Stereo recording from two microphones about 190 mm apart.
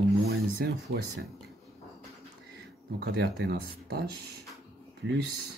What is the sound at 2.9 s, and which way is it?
Speech, 65° right (ahead or behind).